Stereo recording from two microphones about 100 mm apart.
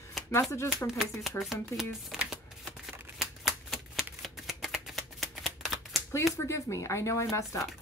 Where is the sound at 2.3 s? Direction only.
Centre (ahead or behind).